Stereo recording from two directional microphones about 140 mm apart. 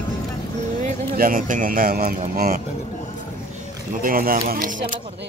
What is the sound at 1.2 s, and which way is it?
Speech, 80° right.